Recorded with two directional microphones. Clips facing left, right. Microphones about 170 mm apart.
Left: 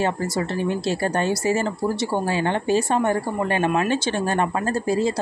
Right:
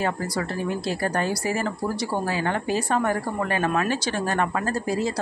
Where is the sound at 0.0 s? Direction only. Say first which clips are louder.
Left 3 dB; 25° left (ahead or behind).